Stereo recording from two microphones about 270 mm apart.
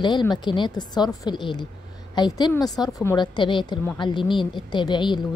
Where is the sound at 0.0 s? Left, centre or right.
Centre.